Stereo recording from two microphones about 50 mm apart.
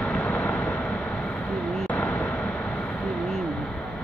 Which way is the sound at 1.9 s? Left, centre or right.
Left.